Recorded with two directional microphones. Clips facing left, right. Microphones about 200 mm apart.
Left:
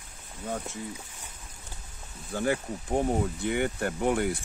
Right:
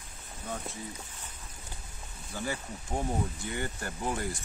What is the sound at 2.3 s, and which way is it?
Speech, 60° left (ahead or behind).